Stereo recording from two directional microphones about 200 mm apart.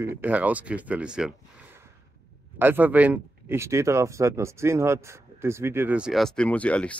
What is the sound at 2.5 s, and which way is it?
Speech, 10° right (ahead or behind).